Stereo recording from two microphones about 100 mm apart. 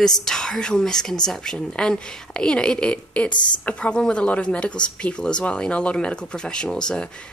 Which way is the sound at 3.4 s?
50° left (ahead or behind).